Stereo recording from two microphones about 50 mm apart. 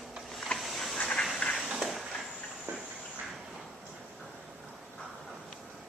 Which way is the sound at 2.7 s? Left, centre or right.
Right.